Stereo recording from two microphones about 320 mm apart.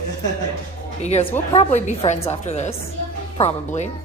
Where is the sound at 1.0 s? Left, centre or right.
Centre.